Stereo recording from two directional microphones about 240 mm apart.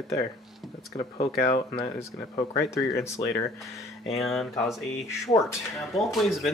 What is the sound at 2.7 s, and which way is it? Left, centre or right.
Speech, centre.